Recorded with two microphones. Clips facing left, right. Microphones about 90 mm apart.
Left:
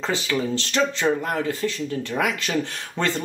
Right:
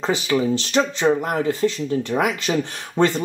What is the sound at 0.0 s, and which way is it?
Speech, 15° right (ahead or behind).